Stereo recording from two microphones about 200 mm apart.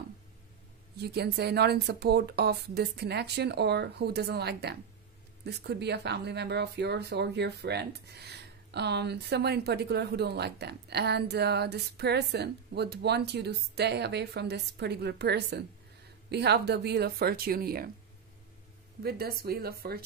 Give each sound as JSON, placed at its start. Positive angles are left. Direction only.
{"t": 0.9, "sound": "speech", "side_deg": -55}
{"t": 19.0, "sound": "speech", "side_deg": -50}